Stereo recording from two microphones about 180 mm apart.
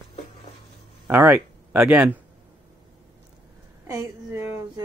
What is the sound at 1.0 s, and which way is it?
Speech, 10° right (ahead or behind).